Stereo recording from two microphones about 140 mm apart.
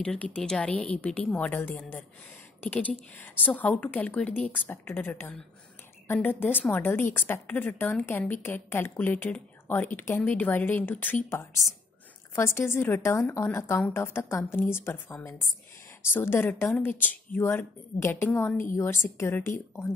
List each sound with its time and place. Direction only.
0.0 s a woman's voice: 10° left (ahead or behind)
12.4 s a woman's voice: 20° left (ahead or behind)